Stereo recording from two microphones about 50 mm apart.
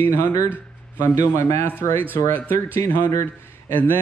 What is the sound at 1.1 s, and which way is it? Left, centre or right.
Speech, left.